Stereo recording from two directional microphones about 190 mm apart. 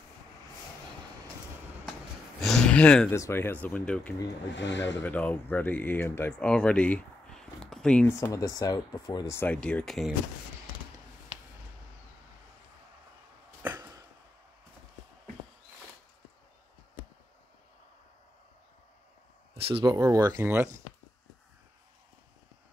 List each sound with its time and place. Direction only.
2.4 s a sound: 5° left (ahead or behind)
3.2 s speech: 15° left (ahead or behind)
4.6 s speech: 70° left (ahead or behind)
5.0 s speech: 10° left (ahead or behind)
8.2 s speech: 20° left (ahead or behind); by 10.1 s centre (ahead or behind)
13.6 s a sound: 15° right (ahead or behind)
19.5 s speech: 25° right (ahead or behind); by 20.7 s 10° right (ahead or behind)